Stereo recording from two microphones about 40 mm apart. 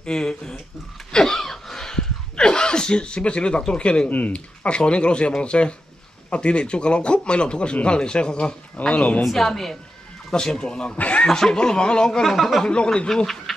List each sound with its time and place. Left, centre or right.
0.0 s speech: left
1.1 s a sound: centre
4.3 s speech: left
8.9 s a woman's voice: left
9.2 s speech: centre
10.3 s speech: left
11.0 s speech: left
11.2 s speech: centre
11.6 s speech: left
12.2 s speech: centre
12.6 s speech: left
13.1 s a sound: centre